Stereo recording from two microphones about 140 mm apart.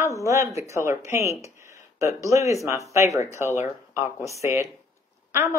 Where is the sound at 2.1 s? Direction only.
20° right (ahead or behind).